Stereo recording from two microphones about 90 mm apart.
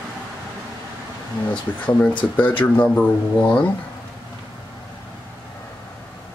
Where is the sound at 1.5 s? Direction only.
15° left (ahead or behind).